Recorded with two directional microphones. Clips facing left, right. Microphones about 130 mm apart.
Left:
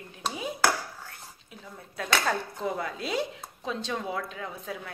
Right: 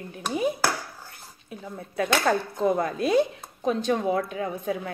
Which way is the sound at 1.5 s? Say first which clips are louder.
Right 10 dB; 60° right (ahead or behind).